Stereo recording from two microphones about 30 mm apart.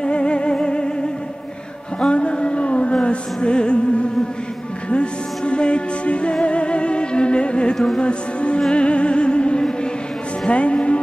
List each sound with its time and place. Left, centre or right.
0.0 s music: left
2.0 s music: left